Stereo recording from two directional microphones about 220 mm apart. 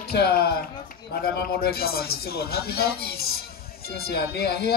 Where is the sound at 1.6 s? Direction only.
45° left (ahead or behind).